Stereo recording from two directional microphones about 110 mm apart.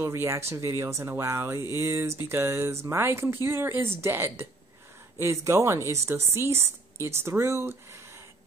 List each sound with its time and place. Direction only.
0.0 s speech: 25° right (ahead or behind)